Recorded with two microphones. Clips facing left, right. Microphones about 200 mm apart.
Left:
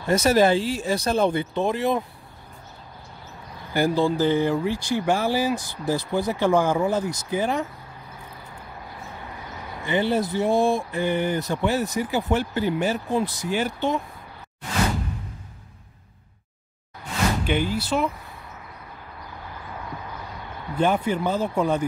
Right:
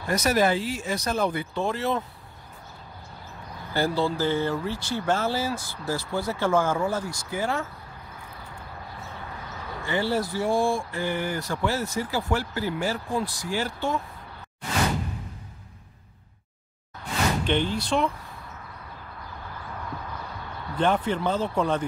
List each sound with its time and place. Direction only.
0.0 s speech: 25° left (ahead or behind)
3.7 s speech: 15° left (ahead or behind)
9.8 s speech: 20° left (ahead or behind)
17.5 s speech: 5° left (ahead or behind)
20.7 s speech: 10° left (ahead or behind)